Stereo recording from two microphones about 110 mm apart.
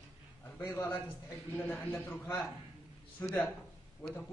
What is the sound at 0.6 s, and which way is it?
A man's voice, 20° left (ahead or behind).